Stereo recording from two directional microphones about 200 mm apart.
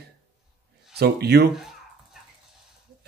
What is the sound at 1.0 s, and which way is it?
Speech, 55° right (ahead or behind).